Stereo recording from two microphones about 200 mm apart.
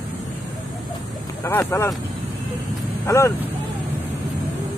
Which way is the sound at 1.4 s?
10° left (ahead or behind).